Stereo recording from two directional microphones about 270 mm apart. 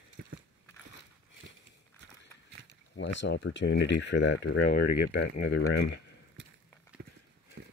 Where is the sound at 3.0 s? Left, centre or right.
Left.